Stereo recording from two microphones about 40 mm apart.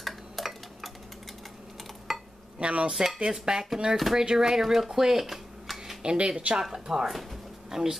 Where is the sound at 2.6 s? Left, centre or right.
Right.